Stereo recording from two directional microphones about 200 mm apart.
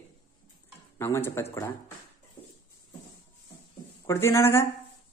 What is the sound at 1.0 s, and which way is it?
Speech, 15° left (ahead or behind).